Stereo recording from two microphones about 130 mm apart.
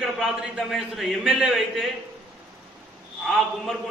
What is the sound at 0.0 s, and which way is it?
A man's voice, centre (ahead or behind).